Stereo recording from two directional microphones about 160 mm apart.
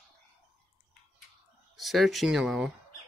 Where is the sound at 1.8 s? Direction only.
Centre (ahead or behind).